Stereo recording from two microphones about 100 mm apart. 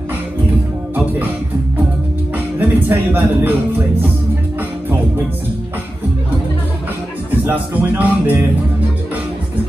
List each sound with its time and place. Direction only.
2.3 s music: 20° right (ahead or behind)
7.4 s speech: 15° right (ahead or behind)